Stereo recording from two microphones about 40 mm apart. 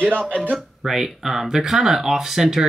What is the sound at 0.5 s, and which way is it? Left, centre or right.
Speech, centre.